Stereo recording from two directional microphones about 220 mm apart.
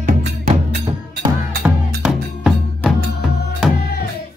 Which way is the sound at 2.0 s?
Centre (ahead or behind).